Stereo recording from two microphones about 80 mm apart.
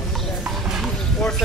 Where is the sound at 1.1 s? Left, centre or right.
Centre.